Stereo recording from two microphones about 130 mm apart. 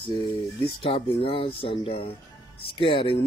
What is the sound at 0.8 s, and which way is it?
Speech, 45° left (ahead or behind).